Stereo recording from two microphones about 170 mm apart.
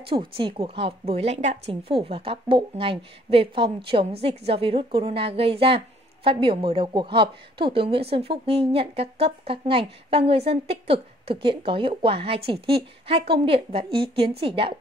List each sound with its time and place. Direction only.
0.1 s a woman's voice: 30° right (ahead or behind)